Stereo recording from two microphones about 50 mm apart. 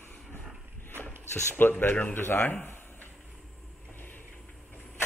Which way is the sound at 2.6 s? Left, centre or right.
Left.